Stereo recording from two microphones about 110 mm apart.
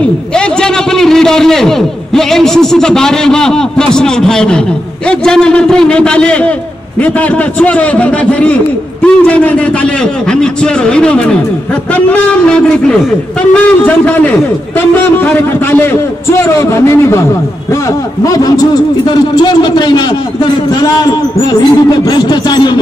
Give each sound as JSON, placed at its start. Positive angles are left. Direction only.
{"t": 0.3, "sound": "a man's voice", "side_deg": 5}
{"t": 18.2, "sound": "a man's voice", "side_deg": 30}
{"t": 21.5, "sound": "a man's voice", "side_deg": 40}